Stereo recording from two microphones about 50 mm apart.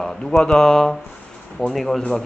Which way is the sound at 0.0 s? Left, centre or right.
Centre.